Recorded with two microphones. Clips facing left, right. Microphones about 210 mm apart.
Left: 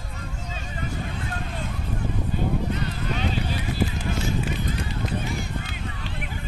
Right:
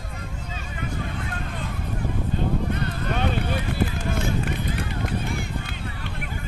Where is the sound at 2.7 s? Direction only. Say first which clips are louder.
Right 1 dB; 55° right (ahead or behind).